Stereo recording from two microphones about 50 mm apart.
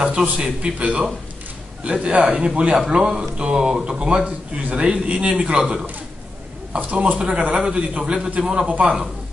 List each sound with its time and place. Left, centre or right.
0.0 s speech: right